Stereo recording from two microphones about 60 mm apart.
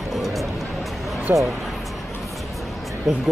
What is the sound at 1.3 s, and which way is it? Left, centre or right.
Speech, right.